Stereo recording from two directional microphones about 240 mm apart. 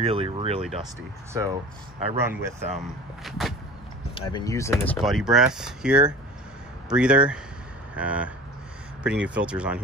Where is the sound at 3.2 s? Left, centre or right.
Centre.